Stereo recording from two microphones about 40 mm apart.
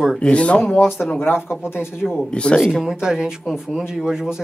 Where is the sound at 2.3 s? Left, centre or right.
Left.